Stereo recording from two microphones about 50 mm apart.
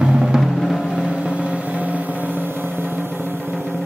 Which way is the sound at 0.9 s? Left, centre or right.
Right.